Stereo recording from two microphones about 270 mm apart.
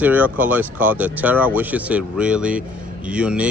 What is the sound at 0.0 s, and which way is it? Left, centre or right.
Speech, centre.